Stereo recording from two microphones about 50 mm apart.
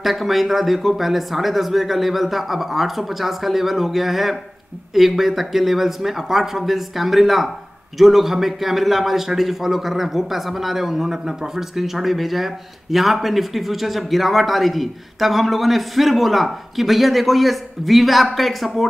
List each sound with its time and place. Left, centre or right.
0.0 s a man's voice: centre